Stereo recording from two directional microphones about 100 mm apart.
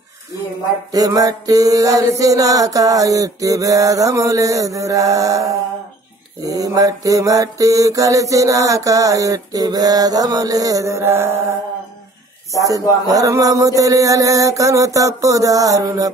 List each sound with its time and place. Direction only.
0.9 s mantra: 40° right (ahead or behind)
12.5 s mantra: 35° right (ahead or behind)